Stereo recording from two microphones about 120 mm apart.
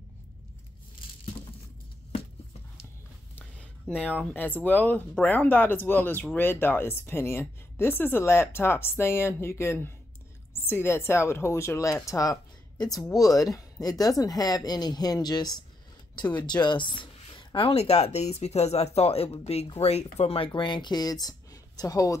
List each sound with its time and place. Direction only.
3.5 s a woman's voice: 10° left (ahead or behind); by 22.1 s 30° left (ahead or behind)